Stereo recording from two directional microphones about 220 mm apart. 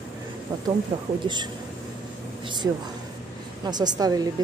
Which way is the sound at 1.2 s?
20° right (ahead or behind).